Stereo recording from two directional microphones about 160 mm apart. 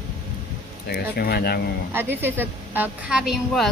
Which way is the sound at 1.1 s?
75° left (ahead or behind).